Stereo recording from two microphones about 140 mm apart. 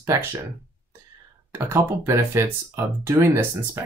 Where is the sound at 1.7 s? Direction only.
15° right (ahead or behind).